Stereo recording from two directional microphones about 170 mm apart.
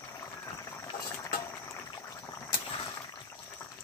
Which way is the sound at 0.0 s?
15° left (ahead or behind).